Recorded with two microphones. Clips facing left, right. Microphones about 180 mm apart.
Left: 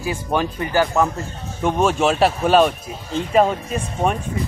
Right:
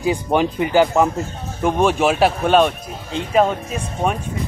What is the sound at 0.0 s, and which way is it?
Speech, 20° right (ahead or behind).